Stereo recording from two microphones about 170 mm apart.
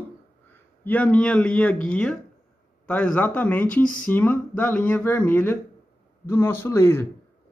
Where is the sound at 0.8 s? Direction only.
10° left (ahead or behind).